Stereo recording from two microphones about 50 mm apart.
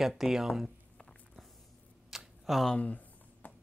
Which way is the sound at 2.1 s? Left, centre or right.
Centre.